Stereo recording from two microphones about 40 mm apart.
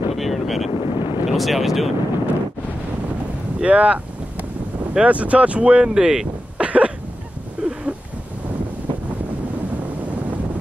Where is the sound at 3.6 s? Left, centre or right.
Right.